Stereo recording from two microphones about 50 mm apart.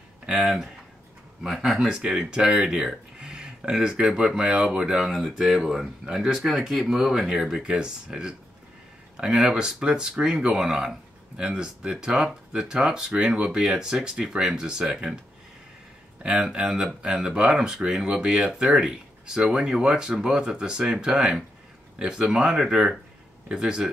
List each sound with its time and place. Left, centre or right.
1.7 s speech: centre
2.0 s speech: centre
16.2 s speech: centre